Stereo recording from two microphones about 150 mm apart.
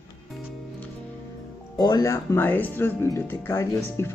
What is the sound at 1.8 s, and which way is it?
Speech, 25° left (ahead or behind).